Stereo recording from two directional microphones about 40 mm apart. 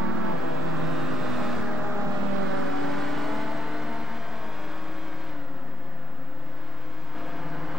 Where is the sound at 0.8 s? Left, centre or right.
Centre.